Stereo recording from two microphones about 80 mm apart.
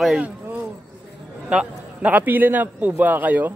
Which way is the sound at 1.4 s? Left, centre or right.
Centre.